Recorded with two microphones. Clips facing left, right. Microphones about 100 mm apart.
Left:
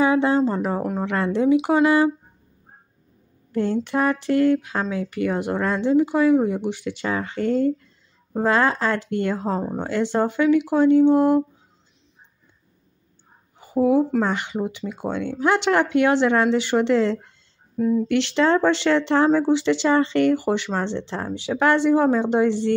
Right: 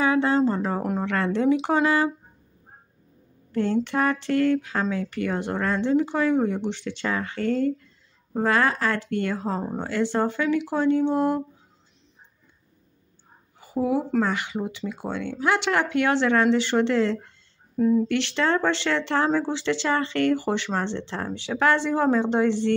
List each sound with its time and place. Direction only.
0.0 s a sound: 20° left (ahead or behind)
0.9 s speech: 15° left (ahead or behind)
3.5 s speech: 15° left (ahead or behind)
13.6 s a sound: 20° left (ahead or behind)
14.2 s speech: 20° left (ahead or behind)
17.7 s speech: centre (ahead or behind)
18.0 s speech: 20° left (ahead or behind)